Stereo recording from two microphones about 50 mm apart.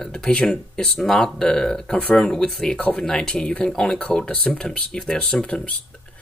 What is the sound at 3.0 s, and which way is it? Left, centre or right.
Speech, centre.